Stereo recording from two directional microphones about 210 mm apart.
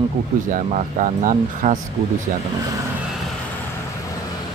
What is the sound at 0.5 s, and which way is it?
Speech, 35° right (ahead or behind).